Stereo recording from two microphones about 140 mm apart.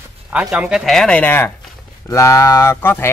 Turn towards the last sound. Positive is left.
turn(degrees=15)  # may be behind; listen again after turning